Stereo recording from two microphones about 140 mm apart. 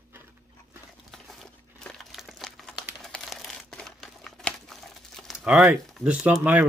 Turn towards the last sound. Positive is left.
turn(degrees=-15)  # may be behind; listen again after turning